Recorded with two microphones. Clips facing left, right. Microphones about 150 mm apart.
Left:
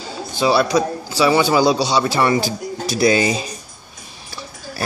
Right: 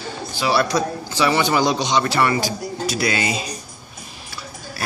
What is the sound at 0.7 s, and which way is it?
A man's voice, 10° left (ahead or behind).